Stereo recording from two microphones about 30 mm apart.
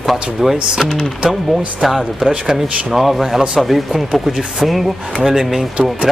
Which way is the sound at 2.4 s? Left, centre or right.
Centre.